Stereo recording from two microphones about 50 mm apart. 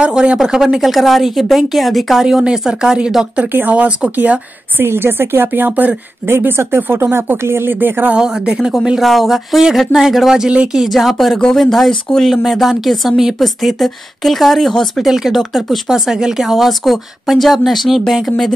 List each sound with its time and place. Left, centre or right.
0.1 s speech: right
0.4 s speech: centre
3.7 s speech: right
4.8 s speech: right
6.2 s speech: right
8.2 s speech: centre